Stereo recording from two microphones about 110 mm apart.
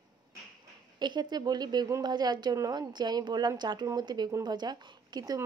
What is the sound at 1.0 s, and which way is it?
A woman's voice, 40° right (ahead or behind).